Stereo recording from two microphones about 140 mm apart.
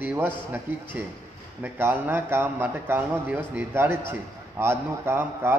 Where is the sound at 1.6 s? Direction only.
15° right (ahead or behind).